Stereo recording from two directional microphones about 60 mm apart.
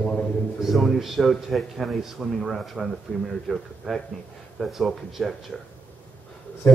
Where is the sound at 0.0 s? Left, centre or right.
Centre.